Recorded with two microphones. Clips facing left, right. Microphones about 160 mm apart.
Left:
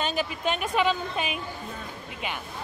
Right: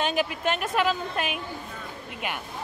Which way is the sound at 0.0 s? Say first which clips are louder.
Right 2 dB; 10° right (ahead or behind).